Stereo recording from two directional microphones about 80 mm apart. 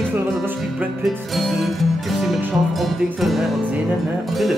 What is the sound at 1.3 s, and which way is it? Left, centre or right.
Music, centre.